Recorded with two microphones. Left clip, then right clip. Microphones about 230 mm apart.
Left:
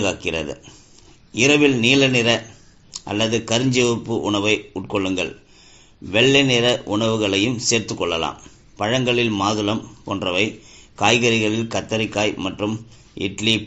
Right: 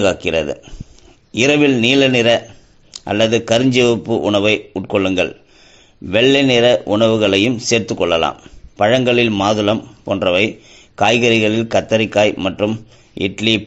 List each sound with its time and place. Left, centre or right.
0.0 s a man's voice: right